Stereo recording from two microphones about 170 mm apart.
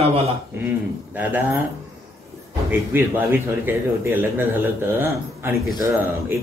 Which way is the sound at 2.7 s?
15° right (ahead or behind).